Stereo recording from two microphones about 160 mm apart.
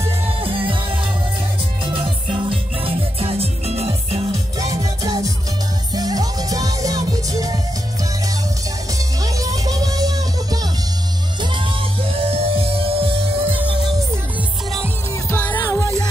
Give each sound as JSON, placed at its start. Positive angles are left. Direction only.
{"t": 0.4, "sound": "music", "side_deg": -35}
{"t": 2.0, "sound": "music", "side_deg": -35}
{"t": 4.6, "sound": "music", "side_deg": -20}
{"t": 8.9, "sound": "music", "side_deg": -20}
{"t": 11.5, "sound": "music", "side_deg": -35}
{"t": 15.2, "sound": "music", "side_deg": 10}